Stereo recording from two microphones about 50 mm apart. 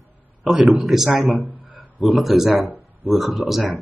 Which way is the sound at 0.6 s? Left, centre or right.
Centre.